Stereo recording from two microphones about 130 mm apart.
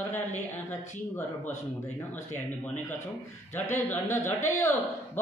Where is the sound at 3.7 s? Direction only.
20° left (ahead or behind).